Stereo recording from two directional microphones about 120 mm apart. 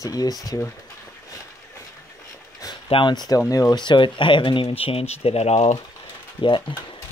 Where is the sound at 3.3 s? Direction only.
30° left (ahead or behind); by 5.8 s 65° left (ahead or behind).